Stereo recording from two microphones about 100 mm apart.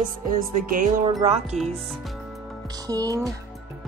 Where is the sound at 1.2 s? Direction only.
90° right.